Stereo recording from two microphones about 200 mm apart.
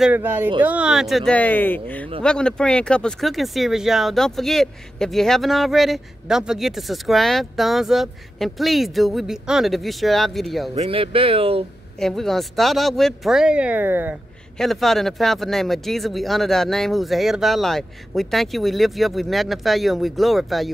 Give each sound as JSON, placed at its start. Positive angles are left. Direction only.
{"t": 0.0, "sound": "speech", "side_deg": -10}
{"t": 10.7, "sound": "speech", "side_deg": -30}
{"t": 12.0, "sound": "speech", "side_deg": 0}
{"t": 14.6, "sound": "speech", "side_deg": 0}